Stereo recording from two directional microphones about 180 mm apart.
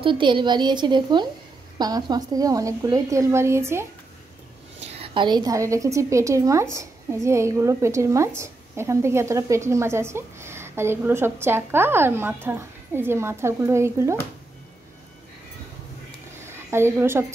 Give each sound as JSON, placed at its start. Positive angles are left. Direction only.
{"t": 0.0, "sound": "a woman's voice", "side_deg": -25}
{"t": 4.7, "sound": "a woman's voice", "side_deg": -30}
{"t": 16.4, "sound": "a woman's voice", "side_deg": -15}